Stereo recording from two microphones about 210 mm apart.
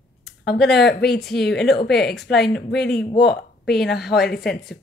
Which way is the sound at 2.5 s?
50° left (ahead or behind).